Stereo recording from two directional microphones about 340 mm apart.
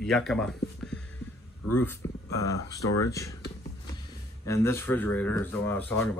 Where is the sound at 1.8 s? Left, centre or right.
Centre.